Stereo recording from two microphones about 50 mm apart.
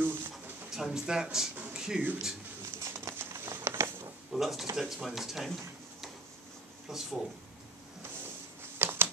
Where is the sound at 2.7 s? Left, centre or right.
Right.